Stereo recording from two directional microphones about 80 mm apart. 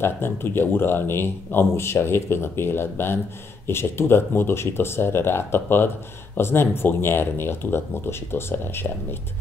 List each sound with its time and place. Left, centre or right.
0.0 s a man's voice: left